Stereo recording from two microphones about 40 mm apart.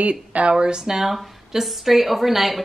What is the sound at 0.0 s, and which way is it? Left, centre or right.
Speech, right.